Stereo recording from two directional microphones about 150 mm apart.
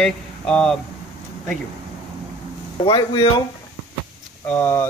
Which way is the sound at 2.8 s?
35° left (ahead or behind).